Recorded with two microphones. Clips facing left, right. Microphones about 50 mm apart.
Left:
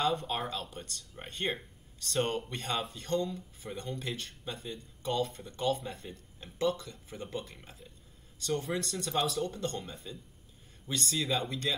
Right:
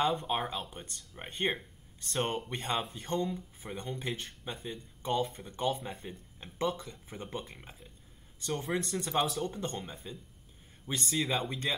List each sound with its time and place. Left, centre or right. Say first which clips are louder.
0.0 s speech: right 1 dB; centre